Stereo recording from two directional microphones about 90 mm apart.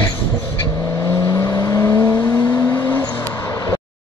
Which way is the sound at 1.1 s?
30° left (ahead or behind).